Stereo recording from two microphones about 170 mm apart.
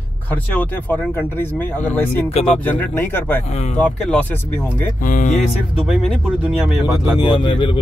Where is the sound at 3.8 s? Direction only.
5° left (ahead or behind).